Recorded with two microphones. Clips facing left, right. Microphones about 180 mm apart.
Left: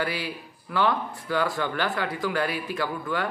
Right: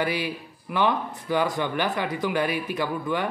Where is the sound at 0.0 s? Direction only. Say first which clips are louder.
Right 3 dB; 20° right (ahead or behind).